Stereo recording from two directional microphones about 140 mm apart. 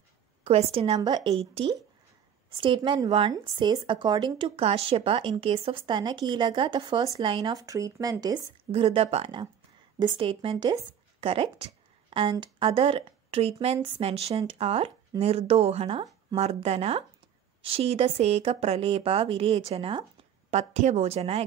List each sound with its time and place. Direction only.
0.4 s a woman's voice: 50° right (ahead or behind)
0.9 s a woman's voice: 30° right (ahead or behind)
2.5 s speech: 35° right (ahead or behind)
8.8 s speech: 45° right (ahead or behind)